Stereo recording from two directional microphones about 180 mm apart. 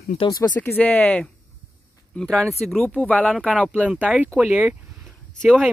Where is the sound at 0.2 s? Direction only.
20° left (ahead or behind).